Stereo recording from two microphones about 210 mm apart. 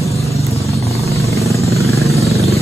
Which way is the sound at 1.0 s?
15° right (ahead or behind).